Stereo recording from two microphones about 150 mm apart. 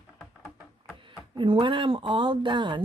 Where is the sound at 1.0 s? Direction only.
35° right (ahead or behind).